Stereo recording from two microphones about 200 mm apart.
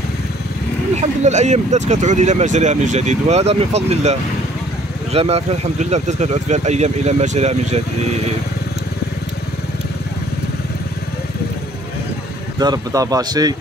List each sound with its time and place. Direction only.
1.2 s speech: 35° right (ahead or behind)
12.5 s speech: 20° right (ahead or behind)